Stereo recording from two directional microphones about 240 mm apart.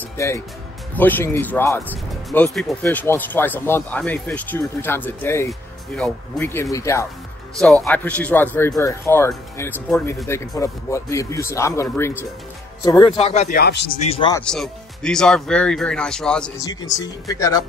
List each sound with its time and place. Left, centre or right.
0.9 s speech: centre; by 13.8 s left
14.1 s speech: centre
14.4 s speech: centre
16.6 s speech: centre